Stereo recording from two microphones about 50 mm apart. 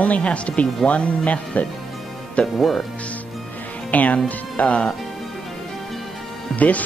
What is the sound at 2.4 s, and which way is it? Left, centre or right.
Speech, centre.